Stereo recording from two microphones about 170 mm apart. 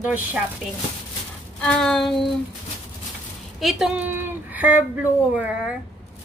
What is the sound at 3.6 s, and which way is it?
A woman's voice, centre (ahead or behind).